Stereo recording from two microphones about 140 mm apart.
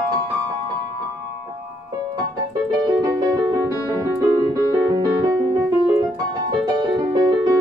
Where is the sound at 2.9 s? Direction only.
25° right (ahead or behind).